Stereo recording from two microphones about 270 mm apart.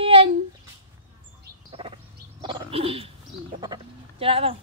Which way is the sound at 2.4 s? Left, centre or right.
Centre.